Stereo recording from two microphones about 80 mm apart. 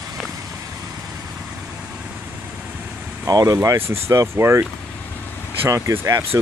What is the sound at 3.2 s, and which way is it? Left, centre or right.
Speech, right.